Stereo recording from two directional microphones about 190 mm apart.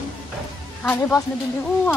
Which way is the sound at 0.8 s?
10° left (ahead or behind).